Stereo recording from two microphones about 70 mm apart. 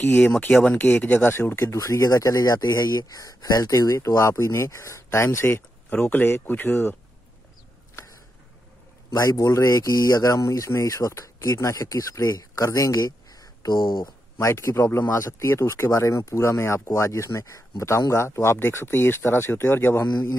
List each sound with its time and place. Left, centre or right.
0.2 s speech: centre
0.7 s speech: left
5.9 s speech: left
9.1 s a man's voice: left
9.4 s speech: left
14.4 s speech: left